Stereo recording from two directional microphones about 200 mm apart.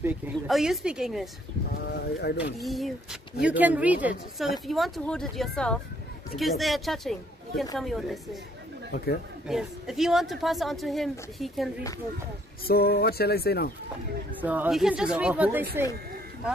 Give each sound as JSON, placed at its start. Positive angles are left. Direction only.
{"t": 0.0, "sound": "speech", "side_deg": -5}
{"t": 2.6, "sound": "speech", "side_deg": 0}
{"t": 8.9, "sound": "speech", "side_deg": 50}
{"t": 9.5, "sound": "speech", "side_deg": 0}
{"t": 12.6, "sound": "speech", "side_deg": 50}
{"t": 14.4, "sound": "speech", "side_deg": -10}